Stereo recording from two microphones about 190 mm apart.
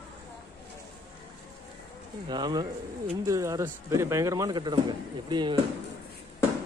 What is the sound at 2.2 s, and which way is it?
Speech, 20° right (ahead or behind).